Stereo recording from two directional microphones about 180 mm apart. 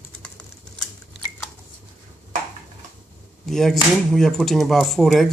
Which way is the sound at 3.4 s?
Centre (ahead or behind).